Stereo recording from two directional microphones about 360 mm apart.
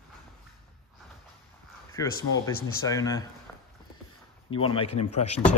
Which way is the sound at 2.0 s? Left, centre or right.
Centre.